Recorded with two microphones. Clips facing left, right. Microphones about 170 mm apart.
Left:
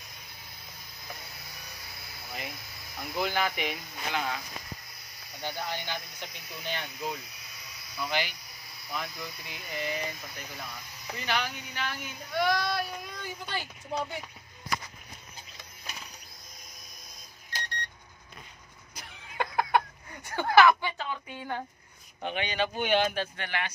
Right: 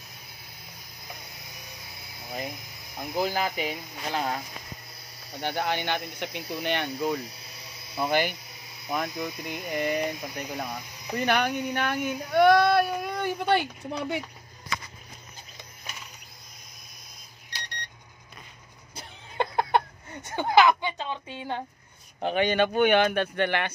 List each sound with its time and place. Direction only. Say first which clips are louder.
3.2 s speech: right 3 dB; 35° right (ahead or behind)
5.4 s speech: right 7 dB; 65° right (ahead or behind)
8.0 s speech: right 7 dB; 50° right (ahead or behind); by 14.2 s 70° right (ahead or behind)
18.9 s a sound: right 4 dB; 30° right (ahead or behind)
22.2 s speech: right 7 dB; 45° right (ahead or behind); by 23.7 s 60° right (ahead or behind)